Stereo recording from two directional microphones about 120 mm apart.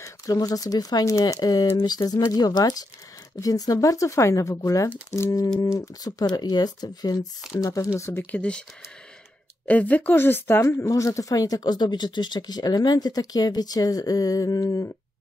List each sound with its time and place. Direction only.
0.0 s a woman's voice: 30° left (ahead or behind); by 8.6 s 10° left (ahead or behind)
9.7 s a woman's voice: 10° left (ahead or behind); by 14.9 s 30° left (ahead or behind)